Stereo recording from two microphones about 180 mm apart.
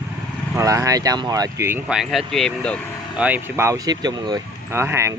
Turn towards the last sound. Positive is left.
turn(degrees=-15)  # may be behind; listen again after turning